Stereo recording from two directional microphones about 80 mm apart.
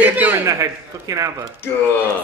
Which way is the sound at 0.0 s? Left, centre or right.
Centre.